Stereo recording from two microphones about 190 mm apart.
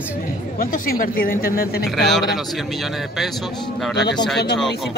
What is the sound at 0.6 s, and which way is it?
Speech, 50° left (ahead or behind).